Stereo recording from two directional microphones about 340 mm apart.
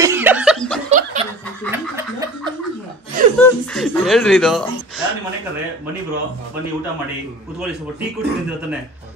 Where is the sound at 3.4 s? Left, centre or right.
Centre.